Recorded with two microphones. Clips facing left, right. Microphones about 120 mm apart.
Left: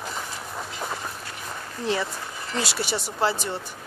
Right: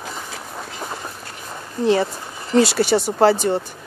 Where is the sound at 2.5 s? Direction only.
45° right (ahead or behind).